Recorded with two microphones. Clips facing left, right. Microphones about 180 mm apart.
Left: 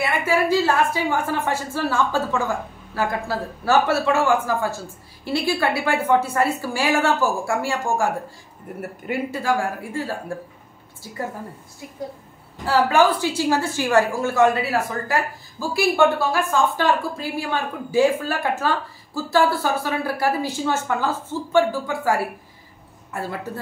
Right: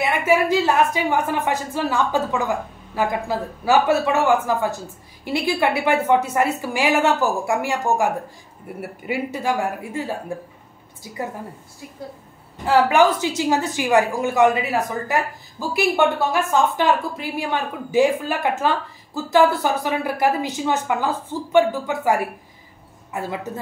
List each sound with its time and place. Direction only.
0.3 s a woman's voice: 20° right (ahead or behind)
8.6 s a woman's voice: 5° right (ahead or behind)
9.4 s a woman's voice: 20° right (ahead or behind)
12.6 s a woman's voice: 15° right (ahead or behind)